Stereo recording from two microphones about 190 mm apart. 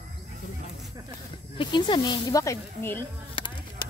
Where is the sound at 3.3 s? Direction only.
25° left (ahead or behind).